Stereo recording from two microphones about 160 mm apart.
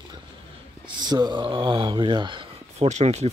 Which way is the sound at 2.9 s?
45° right (ahead or behind).